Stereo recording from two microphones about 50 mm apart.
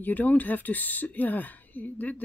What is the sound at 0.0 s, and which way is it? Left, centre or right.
Speech, left.